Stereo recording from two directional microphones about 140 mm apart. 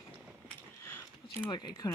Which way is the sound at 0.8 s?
15° left (ahead or behind).